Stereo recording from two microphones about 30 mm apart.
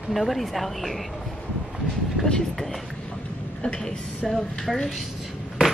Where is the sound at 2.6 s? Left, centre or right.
Centre.